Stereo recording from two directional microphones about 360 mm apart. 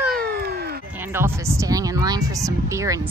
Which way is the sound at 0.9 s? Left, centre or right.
Centre.